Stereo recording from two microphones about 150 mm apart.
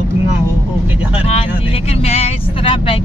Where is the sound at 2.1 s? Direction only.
40° left (ahead or behind).